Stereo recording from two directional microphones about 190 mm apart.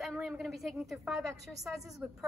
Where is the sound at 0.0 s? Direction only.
Centre (ahead or behind).